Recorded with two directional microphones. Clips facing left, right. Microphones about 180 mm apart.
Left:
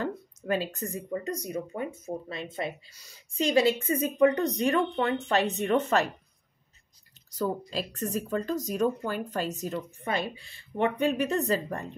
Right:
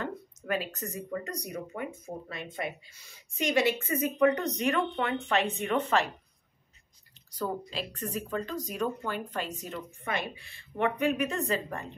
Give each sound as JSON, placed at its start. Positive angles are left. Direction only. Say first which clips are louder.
{"t": 0.0, "sound": "speech", "louder": "left 4 dB", "side_deg": 30}
{"t": 7.3, "sound": "speech", "louder": "left 3 dB", "side_deg": 40}